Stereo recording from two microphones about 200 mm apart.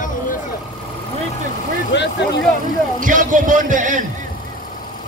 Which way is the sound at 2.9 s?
40° right (ahead or behind).